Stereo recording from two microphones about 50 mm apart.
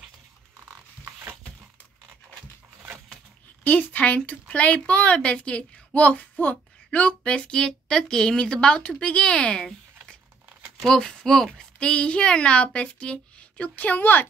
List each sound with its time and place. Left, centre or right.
3.6 s a woman's voice: left
10.9 s a woman's voice: centre; by 14.2 s left